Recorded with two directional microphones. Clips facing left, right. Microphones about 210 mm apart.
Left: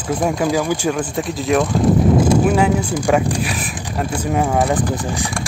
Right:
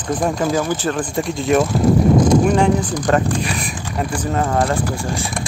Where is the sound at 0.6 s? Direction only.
10° left (ahead or behind).